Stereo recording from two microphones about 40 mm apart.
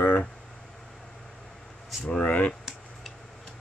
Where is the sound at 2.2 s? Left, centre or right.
Left.